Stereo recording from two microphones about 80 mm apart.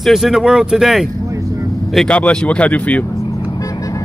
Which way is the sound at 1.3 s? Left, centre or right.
Right.